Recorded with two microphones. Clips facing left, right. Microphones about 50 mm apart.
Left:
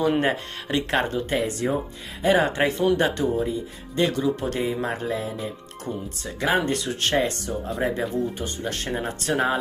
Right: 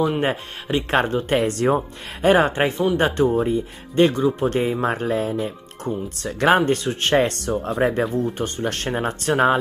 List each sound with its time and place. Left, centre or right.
0.2 s speech: centre
0.8 s speech: right
1.6 s speech: right
2.2 s speech: right
7.2 s speech: right
7.8 s speech: right